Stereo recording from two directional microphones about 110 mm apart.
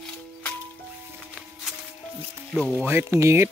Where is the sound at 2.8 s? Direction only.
25° right (ahead or behind).